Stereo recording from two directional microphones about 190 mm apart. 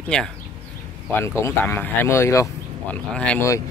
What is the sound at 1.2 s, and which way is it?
Speech, 15° left (ahead or behind).